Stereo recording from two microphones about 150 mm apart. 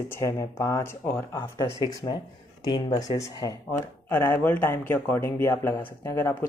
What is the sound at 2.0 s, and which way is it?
Speech, 25° left (ahead or behind).